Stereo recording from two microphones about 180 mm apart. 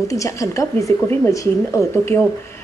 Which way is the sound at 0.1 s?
20° left (ahead or behind).